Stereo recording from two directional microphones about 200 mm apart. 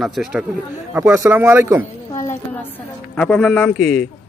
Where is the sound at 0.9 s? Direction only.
15° right (ahead or behind).